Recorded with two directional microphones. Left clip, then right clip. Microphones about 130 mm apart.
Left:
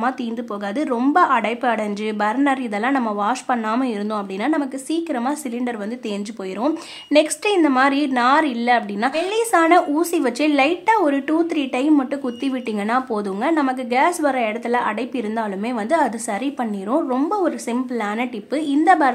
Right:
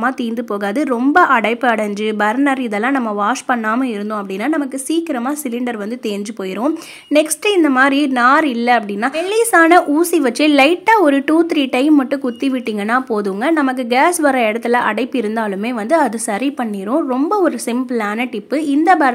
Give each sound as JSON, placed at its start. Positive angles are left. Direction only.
{"t": 1.1, "sound": "a woman's voice", "side_deg": -35}
{"t": 6.6, "sound": "a woman's voice", "side_deg": -20}